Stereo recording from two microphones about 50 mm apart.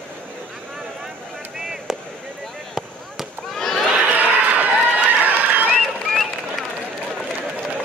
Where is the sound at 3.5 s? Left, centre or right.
Centre.